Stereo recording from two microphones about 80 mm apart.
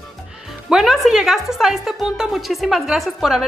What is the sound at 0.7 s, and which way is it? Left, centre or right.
Speech, centre.